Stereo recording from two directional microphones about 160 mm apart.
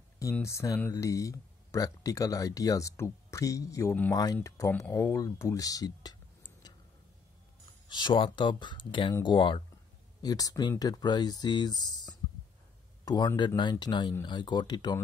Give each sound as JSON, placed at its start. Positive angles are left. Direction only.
{"t": 0.2, "sound": "speech", "side_deg": 15}
{"t": 7.9, "sound": "speech", "side_deg": 30}